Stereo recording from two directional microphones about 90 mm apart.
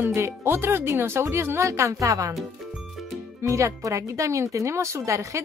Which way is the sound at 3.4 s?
35° right (ahead or behind).